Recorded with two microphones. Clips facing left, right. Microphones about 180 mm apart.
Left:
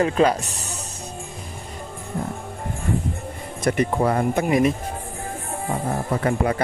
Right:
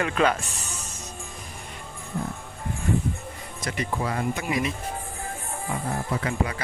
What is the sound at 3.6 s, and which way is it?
Speech, 55° left (ahead or behind).